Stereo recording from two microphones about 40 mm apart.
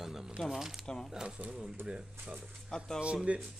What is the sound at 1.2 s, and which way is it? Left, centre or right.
Speech, right.